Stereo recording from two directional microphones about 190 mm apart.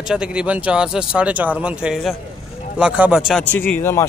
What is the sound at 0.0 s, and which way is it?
Speech, 5° right (ahead or behind).